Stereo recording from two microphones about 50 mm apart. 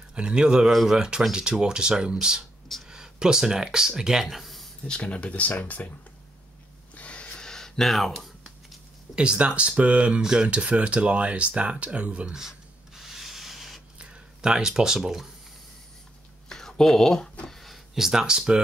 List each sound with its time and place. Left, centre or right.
0.1 s speech: centre
4.8 s speech: centre
7.0 s gasp: left; by 8.3 s centre
9.1 s speech: right
10.2 s speech: centre
12.3 s rub: centre
13.9 s speech: centre
16.4 s a sound: centre
17.9 s speech: centre